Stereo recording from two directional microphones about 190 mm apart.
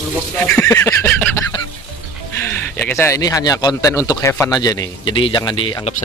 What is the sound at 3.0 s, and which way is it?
Speech, 15° left (ahead or behind).